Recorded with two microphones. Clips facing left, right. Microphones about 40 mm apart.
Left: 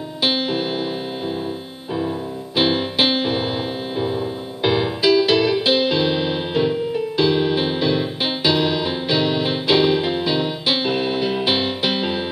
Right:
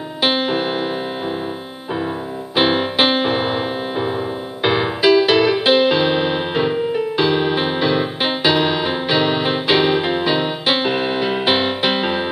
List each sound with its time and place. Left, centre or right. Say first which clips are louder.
0.2 s music: right 3 dB; right
2.5 s music: right 3 dB; right